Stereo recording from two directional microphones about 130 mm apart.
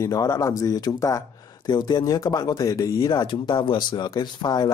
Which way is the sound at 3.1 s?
35° left (ahead or behind).